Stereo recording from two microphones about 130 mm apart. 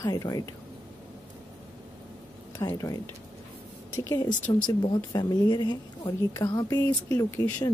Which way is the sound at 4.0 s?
25° left (ahead or behind).